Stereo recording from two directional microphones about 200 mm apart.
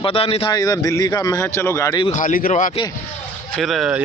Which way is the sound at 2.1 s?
40° left (ahead or behind).